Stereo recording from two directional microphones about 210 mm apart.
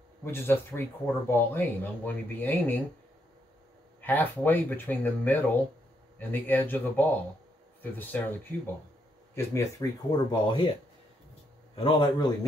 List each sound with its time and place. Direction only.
0.2 s speech: 10° left (ahead or behind)
4.0 s speech: 10° left (ahead or behind)
11.7 s a man's voice: 20° left (ahead or behind)